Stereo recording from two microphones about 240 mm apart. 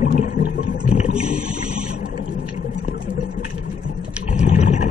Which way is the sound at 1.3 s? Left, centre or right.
Right.